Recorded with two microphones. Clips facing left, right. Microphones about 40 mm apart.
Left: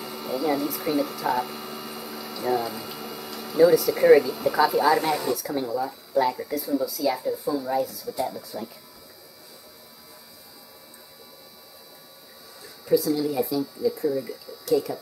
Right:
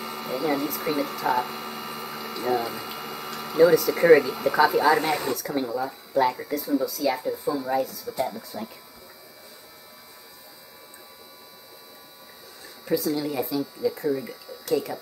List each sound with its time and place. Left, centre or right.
0.0 s speech: centre
12.8 s speech: right